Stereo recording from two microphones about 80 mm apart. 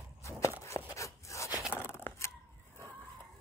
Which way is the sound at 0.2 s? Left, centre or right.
Left.